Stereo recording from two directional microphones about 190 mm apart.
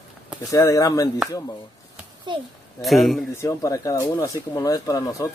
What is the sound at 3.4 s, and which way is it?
Speech, 15° left (ahead or behind).